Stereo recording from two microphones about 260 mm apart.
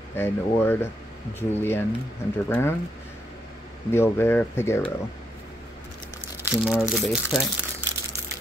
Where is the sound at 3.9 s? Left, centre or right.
Centre.